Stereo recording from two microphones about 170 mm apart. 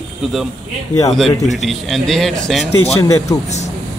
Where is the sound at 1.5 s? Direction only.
Centre (ahead or behind).